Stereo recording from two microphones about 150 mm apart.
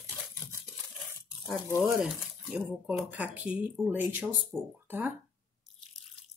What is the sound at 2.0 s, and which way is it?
Speech, 5° right (ahead or behind).